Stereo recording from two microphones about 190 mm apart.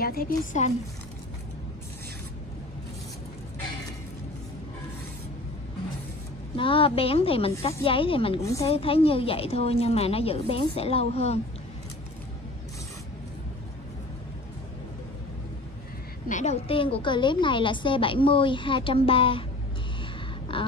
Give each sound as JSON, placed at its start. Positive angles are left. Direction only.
{"t": 0.0, "sound": "a woman's voice", "side_deg": 50}
{"t": 6.5, "sound": "a woman's voice", "side_deg": 30}
{"t": 8.4, "sound": "a woman's voice", "side_deg": 15}
{"t": 8.6, "sound": "a woman's voice", "side_deg": 30}
{"t": 16.3, "sound": "a woman's voice", "side_deg": 40}
{"t": 20.5, "sound": "a sound", "side_deg": 30}